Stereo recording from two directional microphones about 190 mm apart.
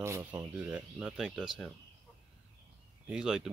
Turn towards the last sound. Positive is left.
turn(degrees=-5)  # may be behind; listen again after turning